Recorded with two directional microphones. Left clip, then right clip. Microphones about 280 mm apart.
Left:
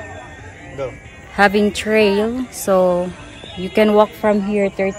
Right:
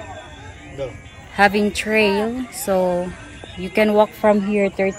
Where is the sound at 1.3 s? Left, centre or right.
Centre.